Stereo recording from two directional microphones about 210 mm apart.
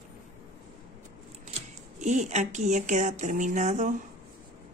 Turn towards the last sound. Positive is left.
turn(degrees=-35)  # may be behind; listen again after turning